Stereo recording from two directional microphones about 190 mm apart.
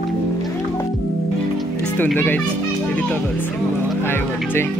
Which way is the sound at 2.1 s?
10° left (ahead or behind).